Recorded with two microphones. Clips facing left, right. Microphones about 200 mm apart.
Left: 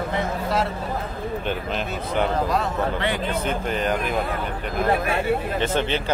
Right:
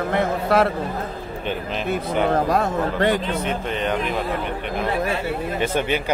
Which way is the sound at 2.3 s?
50° right (ahead or behind).